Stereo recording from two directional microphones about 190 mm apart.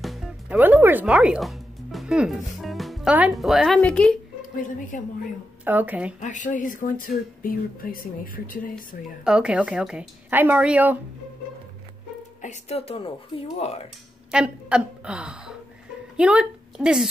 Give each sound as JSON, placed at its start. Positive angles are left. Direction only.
{"t": 0.0, "sound": "music", "side_deg": 0}
{"t": 0.6, "sound": "speech", "side_deg": -10}
{"t": 4.4, "sound": "speech", "side_deg": 45}
{"t": 5.7, "sound": "a woman's voice", "side_deg": -10}
{"t": 6.2, "sound": "speech", "side_deg": 40}
{"t": 9.2, "sound": "a woman's voice", "side_deg": -5}
{"t": 12.4, "sound": "speech", "side_deg": 35}
{"t": 14.3, "sound": "a woman's voice", "side_deg": -5}